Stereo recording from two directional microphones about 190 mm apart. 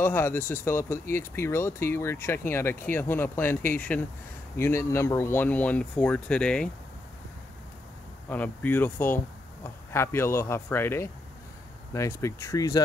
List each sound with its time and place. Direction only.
0.0 s speech: 10° left (ahead or behind)
8.3 s speech: 10° left (ahead or behind)